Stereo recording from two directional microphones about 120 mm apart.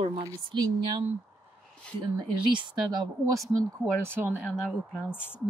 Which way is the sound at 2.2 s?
40° right (ahead or behind).